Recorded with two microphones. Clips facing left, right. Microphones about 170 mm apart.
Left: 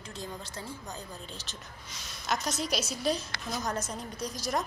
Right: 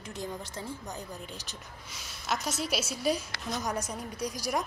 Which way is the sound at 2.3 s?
5° right (ahead or behind).